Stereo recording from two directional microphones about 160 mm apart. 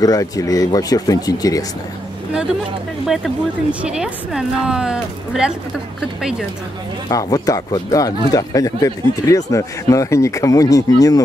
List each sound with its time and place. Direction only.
0.0 s speech: 20° left (ahead or behind)
3.8 s a woman's voice: 5° right (ahead or behind)
7.1 s speech: 20° left (ahead or behind)